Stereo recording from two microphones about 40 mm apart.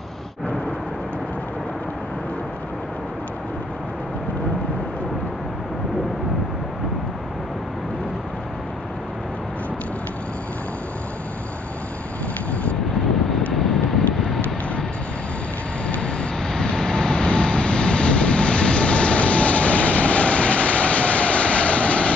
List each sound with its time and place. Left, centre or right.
13.5 s vehicle: centre
16.0 s vehicle: left